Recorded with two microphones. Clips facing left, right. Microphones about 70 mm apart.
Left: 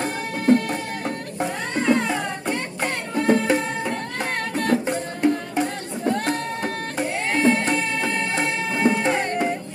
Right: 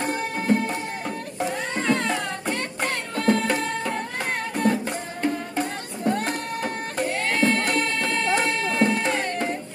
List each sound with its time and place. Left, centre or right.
1.4 s cat: centre
3.2 s music: centre
4.2 s music: centre
5.2 s music: centre
5.6 s music: centre
7.2 s music: centre